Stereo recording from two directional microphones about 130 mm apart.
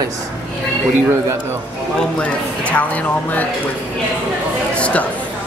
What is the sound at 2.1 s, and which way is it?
Speech, 10° left (ahead or behind).